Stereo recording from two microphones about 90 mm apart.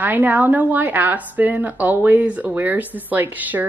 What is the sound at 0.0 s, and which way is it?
A woman's voice, 20° right (ahead or behind).